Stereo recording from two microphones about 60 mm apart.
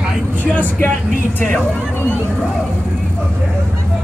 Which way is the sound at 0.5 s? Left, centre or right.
Left.